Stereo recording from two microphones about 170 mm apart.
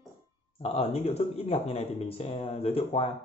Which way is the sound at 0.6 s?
35° left (ahead or behind).